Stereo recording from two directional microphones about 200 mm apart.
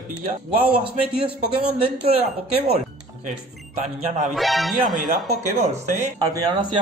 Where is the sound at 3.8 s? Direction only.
35° right (ahead or behind).